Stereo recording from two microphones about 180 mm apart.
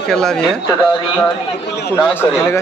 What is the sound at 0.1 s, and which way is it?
Speech, 5° left (ahead or behind).